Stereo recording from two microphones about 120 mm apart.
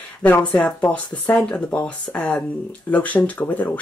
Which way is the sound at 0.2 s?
15° left (ahead or behind).